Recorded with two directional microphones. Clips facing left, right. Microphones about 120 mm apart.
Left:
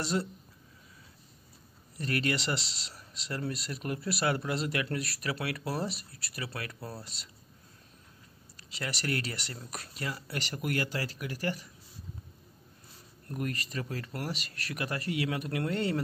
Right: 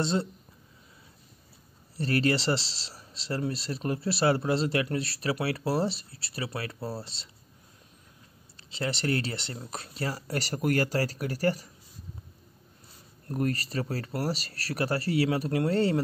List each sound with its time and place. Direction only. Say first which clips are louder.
0.0 s speech: right 4 dB; 25° right (ahead or behind)
2.0 s speech: right 5 dB; 35° right (ahead or behind)
8.5 s speech: right 6 dB; 30° right (ahead or behind)
13.3 s speech: right 6 dB; 35° right (ahead or behind)